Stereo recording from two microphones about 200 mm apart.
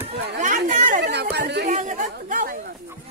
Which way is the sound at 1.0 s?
55° right (ahead or behind).